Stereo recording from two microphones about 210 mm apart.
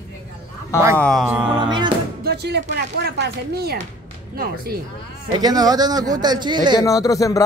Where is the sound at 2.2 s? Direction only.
50° right (ahead or behind).